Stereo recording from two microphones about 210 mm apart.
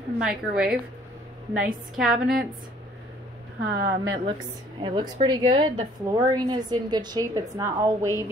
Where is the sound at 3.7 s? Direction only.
55° right (ahead or behind).